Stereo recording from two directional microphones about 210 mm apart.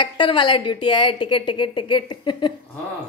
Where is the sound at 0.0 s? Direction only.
25° left (ahead or behind).